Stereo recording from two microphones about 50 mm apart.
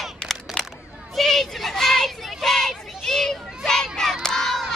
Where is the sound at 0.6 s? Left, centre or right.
Centre.